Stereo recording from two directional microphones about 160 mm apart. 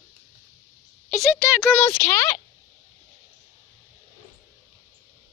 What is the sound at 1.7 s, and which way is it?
Speech, 10° left (ahead or behind).